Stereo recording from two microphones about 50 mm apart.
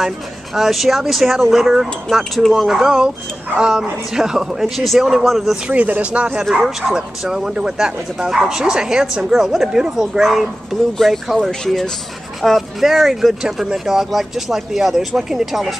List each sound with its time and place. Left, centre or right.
0.6 s speech: centre
2.0 s speech: centre
5.7 s speech: right
6.5 s speech: centre
11.6 s speech: centre
12.4 s speech: centre